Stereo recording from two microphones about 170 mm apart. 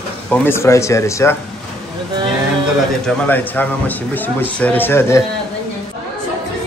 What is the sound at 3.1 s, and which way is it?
A man's voice, 10° left (ahead or behind).